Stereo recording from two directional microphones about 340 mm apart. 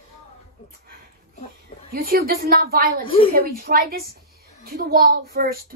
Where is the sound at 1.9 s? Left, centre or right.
Right.